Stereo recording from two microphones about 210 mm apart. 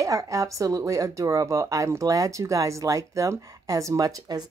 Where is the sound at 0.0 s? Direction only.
15° right (ahead or behind).